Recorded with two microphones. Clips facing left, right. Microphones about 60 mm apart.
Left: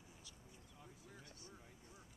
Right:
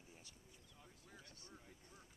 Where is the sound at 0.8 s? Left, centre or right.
Centre.